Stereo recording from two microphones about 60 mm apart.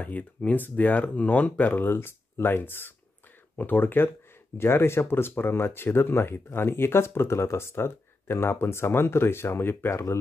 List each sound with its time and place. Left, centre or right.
0.0 s speech: left
1.8 s speech: left